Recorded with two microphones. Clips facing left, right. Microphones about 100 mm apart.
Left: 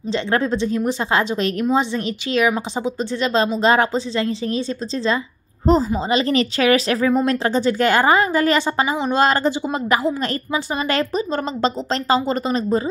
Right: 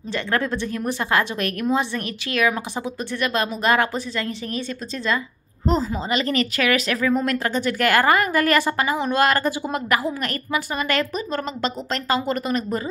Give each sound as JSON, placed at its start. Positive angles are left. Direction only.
{"t": 0.1, "sound": "a woman's voice", "side_deg": 20}